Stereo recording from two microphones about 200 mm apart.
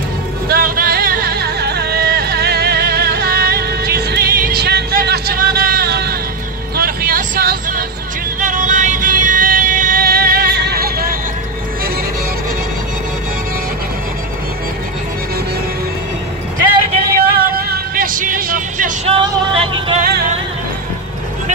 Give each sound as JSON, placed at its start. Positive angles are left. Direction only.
{"t": 0.5, "sound": "music", "side_deg": -45}
{"t": 17.1, "sound": "music", "side_deg": -50}
{"t": 19.0, "sound": "music", "side_deg": -25}
{"t": 20.0, "sound": "music", "side_deg": -50}